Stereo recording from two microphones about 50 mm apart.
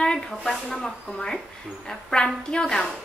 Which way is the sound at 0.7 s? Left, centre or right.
Centre.